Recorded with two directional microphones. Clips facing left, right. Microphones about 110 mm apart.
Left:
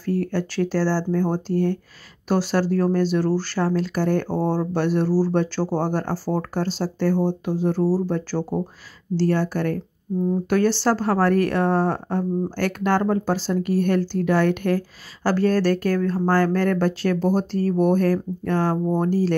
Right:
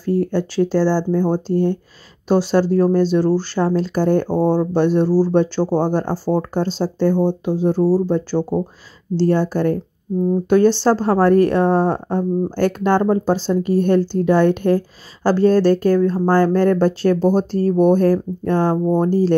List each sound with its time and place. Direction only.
0.0 s speech: 20° right (ahead or behind)